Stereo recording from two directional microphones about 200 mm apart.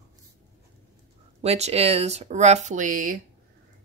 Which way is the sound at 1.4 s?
30° right (ahead or behind).